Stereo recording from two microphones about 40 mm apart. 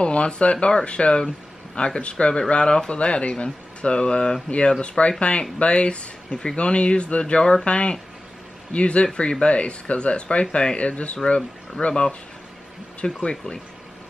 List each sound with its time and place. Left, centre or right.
0.0 s speech: left
11.9 s speech: left
13.2 s speech: left